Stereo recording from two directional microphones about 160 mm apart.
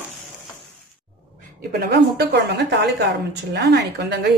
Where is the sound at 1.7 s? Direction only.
85° right.